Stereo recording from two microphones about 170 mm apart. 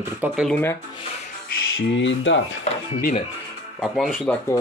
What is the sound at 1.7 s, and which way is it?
Speech, 90° left.